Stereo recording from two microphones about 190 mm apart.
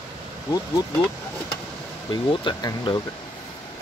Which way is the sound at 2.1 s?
25° left (ahead or behind).